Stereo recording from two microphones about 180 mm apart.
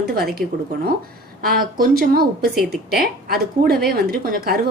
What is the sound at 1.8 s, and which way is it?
A woman's voice, 55° right (ahead or behind).